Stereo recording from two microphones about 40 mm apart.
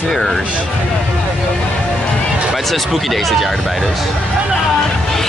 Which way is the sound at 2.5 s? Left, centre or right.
Centre.